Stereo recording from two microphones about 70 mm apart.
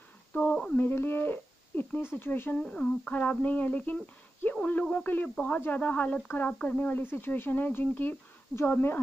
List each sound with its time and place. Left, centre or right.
0.3 s a sound: left
0.7 s speech: left
2.5 s speech: centre; by 9.0 s left